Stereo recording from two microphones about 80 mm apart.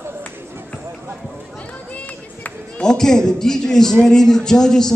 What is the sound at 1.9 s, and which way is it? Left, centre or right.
Run, centre.